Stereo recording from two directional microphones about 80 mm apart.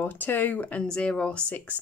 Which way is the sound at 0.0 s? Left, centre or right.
Left.